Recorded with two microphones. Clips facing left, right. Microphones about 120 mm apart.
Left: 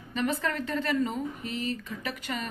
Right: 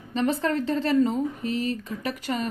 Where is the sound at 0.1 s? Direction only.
30° right (ahead or behind).